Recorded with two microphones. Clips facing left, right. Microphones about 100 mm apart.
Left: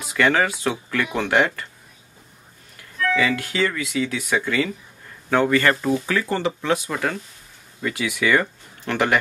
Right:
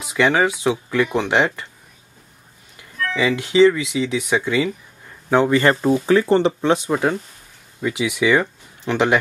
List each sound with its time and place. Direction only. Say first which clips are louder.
0.0 s speech: right 2 dB; 15° right (ahead or behind)
1.3 s speech: right 1 dB; 20° right (ahead or behind)
3.2 s speech: right 10 dB; 20° right (ahead or behind)